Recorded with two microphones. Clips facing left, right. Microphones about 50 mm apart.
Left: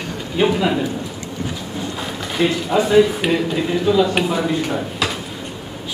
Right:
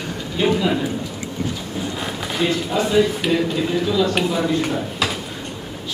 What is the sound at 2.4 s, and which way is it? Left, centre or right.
A man's voice, centre.